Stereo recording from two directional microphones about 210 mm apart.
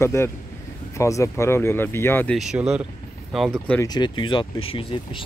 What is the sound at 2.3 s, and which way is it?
Speech, centre (ahead or behind).